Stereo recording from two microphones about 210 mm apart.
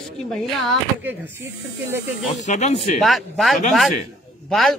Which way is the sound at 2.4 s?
35° left (ahead or behind).